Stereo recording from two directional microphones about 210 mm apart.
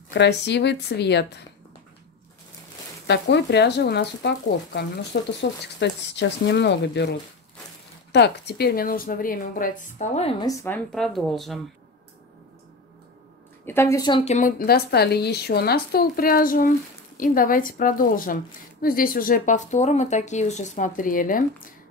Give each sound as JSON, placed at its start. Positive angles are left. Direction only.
{"t": 0.1, "sound": "a woman's voice", "side_deg": 55}
{"t": 3.1, "sound": "a woman's voice", "side_deg": 55}
{"t": 10.4, "sound": "a woman's voice", "side_deg": 15}
{"t": 10.9, "sound": "speech", "side_deg": 0}
{"t": 13.7, "sound": "a woman's voice", "side_deg": 15}
{"t": 14.3, "sound": "a woman's voice", "side_deg": 45}